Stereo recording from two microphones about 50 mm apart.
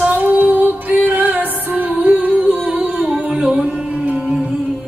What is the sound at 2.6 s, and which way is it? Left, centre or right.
Music, centre.